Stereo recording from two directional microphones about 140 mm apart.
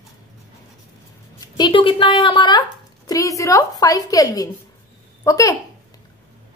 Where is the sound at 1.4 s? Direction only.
30° left (ahead or behind).